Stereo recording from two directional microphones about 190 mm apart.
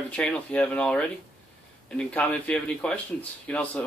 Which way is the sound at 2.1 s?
5° left (ahead or behind).